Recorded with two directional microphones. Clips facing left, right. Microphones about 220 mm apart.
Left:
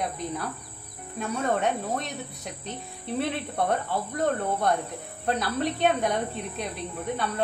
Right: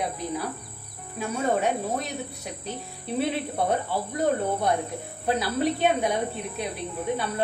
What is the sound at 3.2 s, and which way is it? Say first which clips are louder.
Speech: right 2 dB; 5° right (ahead or behind).